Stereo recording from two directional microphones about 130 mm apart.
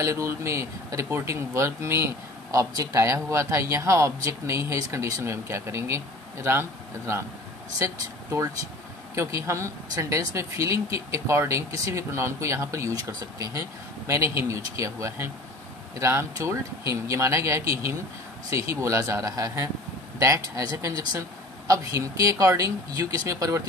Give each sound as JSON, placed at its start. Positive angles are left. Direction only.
{"t": 0.0, "sound": "speech", "side_deg": -20}